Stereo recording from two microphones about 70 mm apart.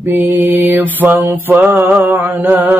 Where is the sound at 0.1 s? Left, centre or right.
Right.